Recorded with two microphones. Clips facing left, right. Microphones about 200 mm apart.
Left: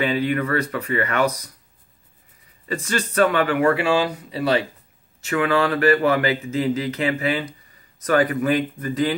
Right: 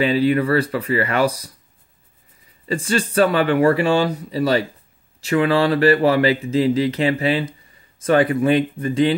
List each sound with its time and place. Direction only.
0.0 s speech: 35° right (ahead or behind)
2.9 s speech: 30° right (ahead or behind)